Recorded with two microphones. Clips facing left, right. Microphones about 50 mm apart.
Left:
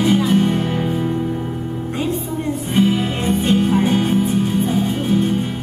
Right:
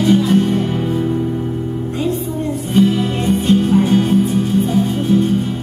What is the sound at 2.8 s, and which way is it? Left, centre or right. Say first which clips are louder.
Music: right 3 dB; centre.